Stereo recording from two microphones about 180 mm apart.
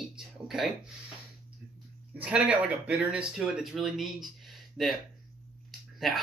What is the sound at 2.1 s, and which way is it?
Speech, 5° right (ahead or behind).